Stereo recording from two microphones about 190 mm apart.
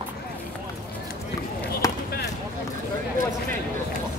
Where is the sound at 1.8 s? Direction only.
20° left (ahead or behind).